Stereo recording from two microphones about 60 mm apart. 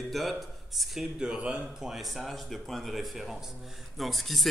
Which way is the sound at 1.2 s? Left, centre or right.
Centre.